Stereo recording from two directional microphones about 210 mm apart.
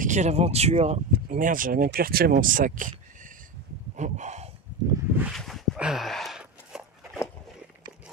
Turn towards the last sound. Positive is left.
turn(degrees=-5)  # may be behind; listen again after turning